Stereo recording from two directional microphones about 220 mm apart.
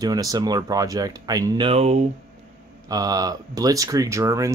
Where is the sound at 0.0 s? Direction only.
15° right (ahead or behind).